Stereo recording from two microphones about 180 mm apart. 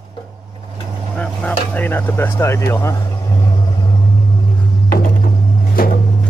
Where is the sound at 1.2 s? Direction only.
5° left (ahead or behind).